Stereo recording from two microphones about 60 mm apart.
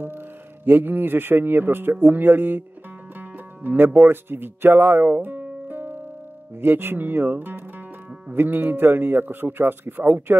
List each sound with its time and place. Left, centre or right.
0.7 s speech: right